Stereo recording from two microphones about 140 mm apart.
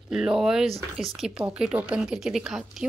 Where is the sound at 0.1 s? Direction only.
5° right (ahead or behind).